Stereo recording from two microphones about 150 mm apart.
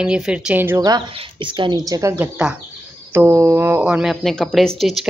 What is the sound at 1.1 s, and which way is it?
Speech, 35° right (ahead or behind).